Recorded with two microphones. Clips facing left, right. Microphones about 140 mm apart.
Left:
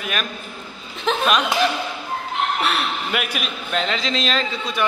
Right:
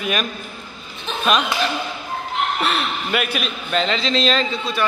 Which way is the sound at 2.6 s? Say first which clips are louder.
Right 1 dB; 5° left (ahead or behind).